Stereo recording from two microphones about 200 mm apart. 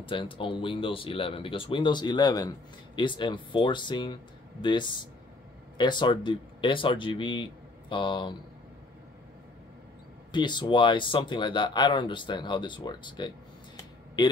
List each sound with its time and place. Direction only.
0.0 s speech: 25° left (ahead or behind)
10.3 s speech: 20° left (ahead or behind)
13.7 s a sound: 20° left (ahead or behind)